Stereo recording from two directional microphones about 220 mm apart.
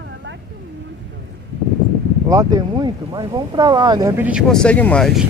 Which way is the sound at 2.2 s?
15° right (ahead or behind).